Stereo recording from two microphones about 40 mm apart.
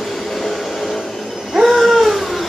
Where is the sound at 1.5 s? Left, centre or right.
Centre.